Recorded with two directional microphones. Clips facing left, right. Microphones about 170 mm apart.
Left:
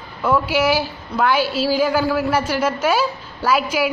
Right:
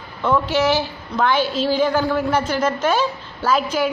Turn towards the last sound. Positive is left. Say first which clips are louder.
# even
turn(degrees=10)  # may be behind; listen again after turning